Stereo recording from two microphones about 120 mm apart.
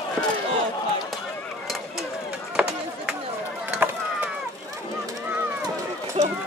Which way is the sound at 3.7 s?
10° right (ahead or behind).